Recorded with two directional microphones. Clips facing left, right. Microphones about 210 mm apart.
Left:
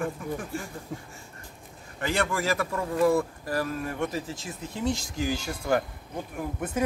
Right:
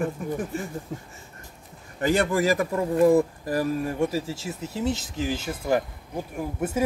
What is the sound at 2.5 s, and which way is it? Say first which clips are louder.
Speech: right 5 dB; 20° right (ahead or behind).